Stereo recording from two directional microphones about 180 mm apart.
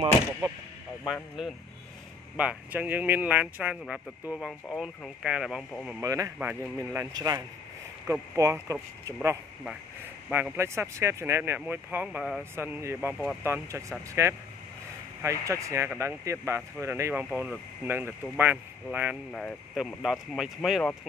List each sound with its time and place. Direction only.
1.0 s speech: 5° right (ahead or behind)
6.0 s speech: 20° right (ahead or behind)
7.2 s speech: 20° right (ahead or behind)
19.3 s speech: centre (ahead or behind)